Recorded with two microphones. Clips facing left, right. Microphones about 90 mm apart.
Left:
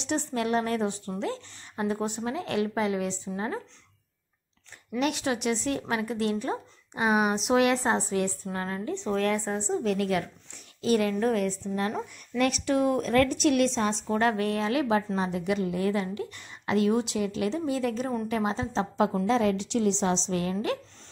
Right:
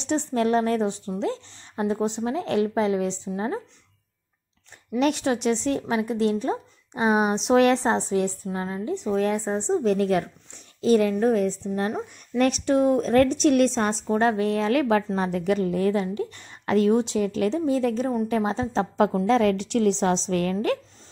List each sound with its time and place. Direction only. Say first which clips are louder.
0.0 s a woman's voice: right 5 dB; 30° right (ahead or behind)
5.0 s a woman's voice: right 5 dB; 35° right (ahead or behind)
14.0 s speech: right 5 dB; 25° right (ahead or behind)
14.6 s a woman's voice: right 5 dB; 50° right (ahead or behind)
15.9 s a woman's voice: right 4 dB; 30° right (ahead or behind); by 20.7 s 55° right (ahead or behind)